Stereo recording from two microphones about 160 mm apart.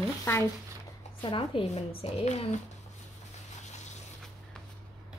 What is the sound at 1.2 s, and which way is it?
A child's voice, 30° left (ahead or behind).